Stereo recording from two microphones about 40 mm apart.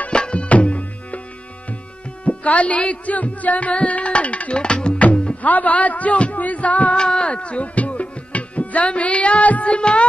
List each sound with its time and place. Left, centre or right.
0.1 s music: left
2.2 s speech: left
4.9 s music: left
5.4 s speech: left
7.0 s music: left